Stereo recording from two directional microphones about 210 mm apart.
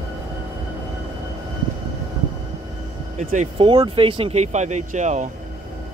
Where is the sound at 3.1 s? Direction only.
35° right (ahead or behind).